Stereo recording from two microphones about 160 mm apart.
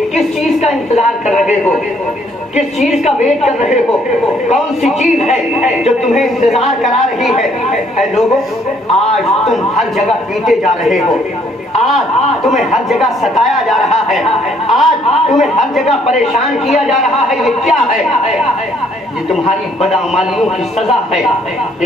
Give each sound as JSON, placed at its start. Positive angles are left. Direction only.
{"t": 0.6, "sound": "speech", "side_deg": 45}
{"t": 5.6, "sound": "a woman's voice", "side_deg": 0}
{"t": 9.1, "sound": "a woman's voice", "side_deg": 0}
{"t": 12.4, "sound": "a woman's voice", "side_deg": 0}
{"t": 19.8, "sound": "a woman's voice", "side_deg": 0}